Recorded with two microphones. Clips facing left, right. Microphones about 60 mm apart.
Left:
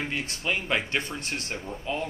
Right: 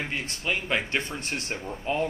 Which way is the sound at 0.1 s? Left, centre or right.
Centre.